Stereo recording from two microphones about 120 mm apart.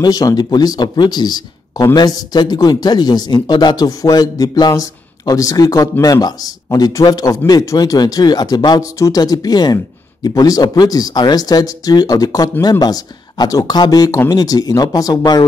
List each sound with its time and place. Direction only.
0.0 s speech: 30° left (ahead or behind)